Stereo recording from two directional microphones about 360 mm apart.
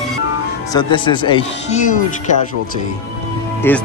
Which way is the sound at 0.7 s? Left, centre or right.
Centre.